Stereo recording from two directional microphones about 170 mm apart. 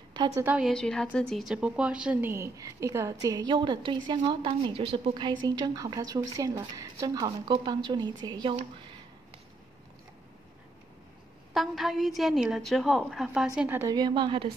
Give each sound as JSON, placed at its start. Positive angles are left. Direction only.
{"t": 0.4, "sound": "a woman's voice", "side_deg": -10}
{"t": 0.7, "sound": "a woman's voice", "side_deg": 5}
{"t": 2.3, "sound": "a woman's voice", "side_deg": -20}
{"t": 11.5, "sound": "a woman's voice", "side_deg": 0}
{"t": 13.6, "sound": "a woman's voice", "side_deg": -15}